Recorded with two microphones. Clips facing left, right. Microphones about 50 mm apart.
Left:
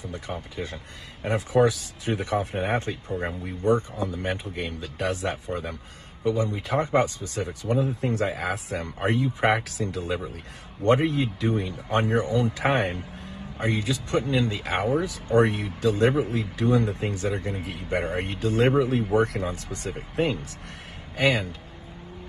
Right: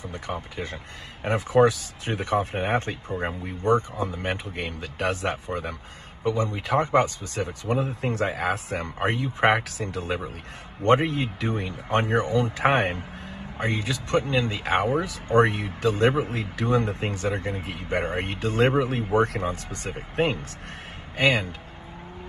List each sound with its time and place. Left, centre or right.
0.0 s speech: right